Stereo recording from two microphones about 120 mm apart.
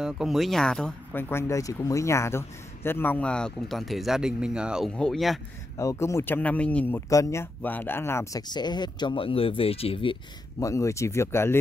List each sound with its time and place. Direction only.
0.0 s speech: 5° right (ahead or behind)
1.1 s a man's voice: 25° left (ahead or behind); by 4.9 s 5° right (ahead or behind)
4.9 s speech: 5° left (ahead or behind)
5.8 s a man's voice: 25° left (ahead or behind)
7.1 s speech: 25° left (ahead or behind)
8.4 s speech: 35° left (ahead or behind)
10.6 s speech: 25° left (ahead or behind)